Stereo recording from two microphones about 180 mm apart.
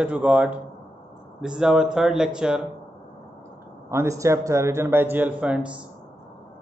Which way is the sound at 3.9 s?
15° right (ahead or behind).